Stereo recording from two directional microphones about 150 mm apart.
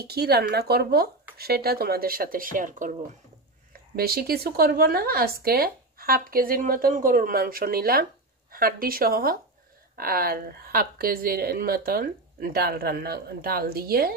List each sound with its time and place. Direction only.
0.0 s speech: 90° right; by 2.9 s 65° right (ahead or behind)
3.9 s speech: 90° right; by 9.4 s 75° right (ahead or behind)
9.9 s speech: 90° right